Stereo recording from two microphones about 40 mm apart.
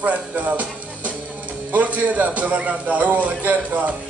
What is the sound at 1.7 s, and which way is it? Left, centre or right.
A man's voice, right.